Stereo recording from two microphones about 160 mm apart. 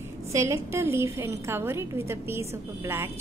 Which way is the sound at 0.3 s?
20° right (ahead or behind).